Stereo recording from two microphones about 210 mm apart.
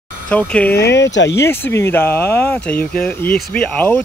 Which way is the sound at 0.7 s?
55° left (ahead or behind).